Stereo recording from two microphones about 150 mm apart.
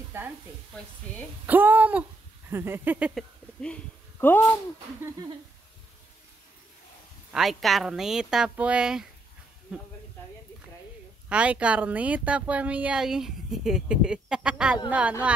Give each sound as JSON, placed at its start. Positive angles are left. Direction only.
{"t": 0.1, "sound": "speech", "side_deg": -15}
{"t": 1.1, "sound": "a woman's voice", "side_deg": 10}
{"t": 1.4, "sound": "speech", "side_deg": -10}
{"t": 3.2, "sound": "speech", "side_deg": 5}
{"t": 7.3, "sound": "speech", "side_deg": 0}
{"t": 11.2, "sound": "speech", "side_deg": -10}